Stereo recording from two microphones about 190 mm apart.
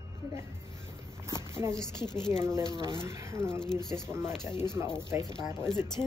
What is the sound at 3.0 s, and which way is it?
Speech, 15° right (ahead or behind).